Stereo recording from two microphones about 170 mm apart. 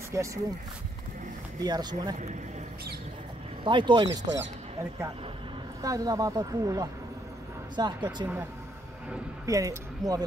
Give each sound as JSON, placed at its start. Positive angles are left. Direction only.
{"t": 0.1, "sound": "speech", "side_deg": -20}
{"t": 1.6, "sound": "speech", "side_deg": -25}
{"t": 3.6, "sound": "speech", "side_deg": -30}
{"t": 5.8, "sound": "speech", "side_deg": -20}
{"t": 9.5, "sound": "speech", "side_deg": -20}